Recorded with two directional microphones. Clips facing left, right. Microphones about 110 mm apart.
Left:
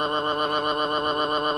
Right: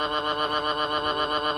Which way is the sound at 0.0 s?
35° left (ahead or behind).